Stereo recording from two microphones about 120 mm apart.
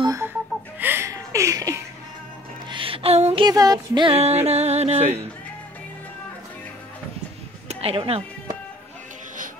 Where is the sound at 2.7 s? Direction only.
50° right (ahead or behind).